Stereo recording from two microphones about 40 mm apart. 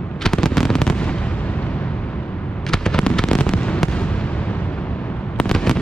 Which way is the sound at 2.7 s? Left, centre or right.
Centre.